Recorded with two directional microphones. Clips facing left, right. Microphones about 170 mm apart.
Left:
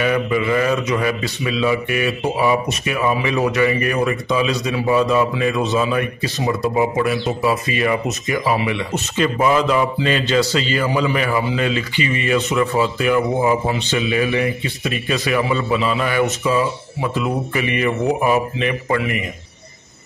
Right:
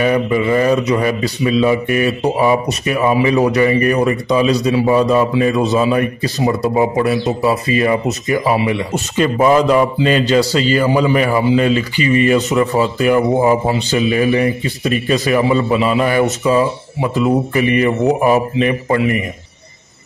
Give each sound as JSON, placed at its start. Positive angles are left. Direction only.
{"t": 0.0, "sound": "speech", "side_deg": -35}